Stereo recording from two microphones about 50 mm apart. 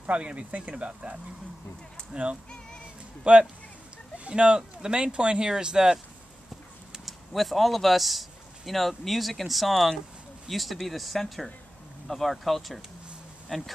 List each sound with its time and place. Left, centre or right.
0.0 s speech: right
2.1 s speech: centre
6.9 s speech: centre